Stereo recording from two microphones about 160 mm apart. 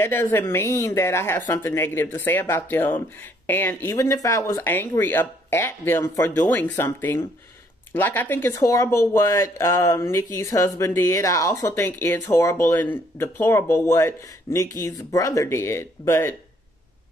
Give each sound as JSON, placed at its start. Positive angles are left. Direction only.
{"t": 0.0, "sound": "speech", "side_deg": 15}